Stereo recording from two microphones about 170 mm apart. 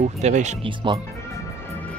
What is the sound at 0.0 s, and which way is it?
Speech, 45° right (ahead or behind).